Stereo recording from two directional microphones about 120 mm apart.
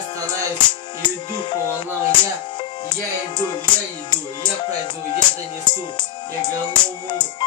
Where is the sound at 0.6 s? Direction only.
40° left (ahead or behind).